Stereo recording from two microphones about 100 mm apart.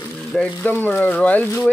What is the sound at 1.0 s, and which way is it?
Speech, 15° left (ahead or behind).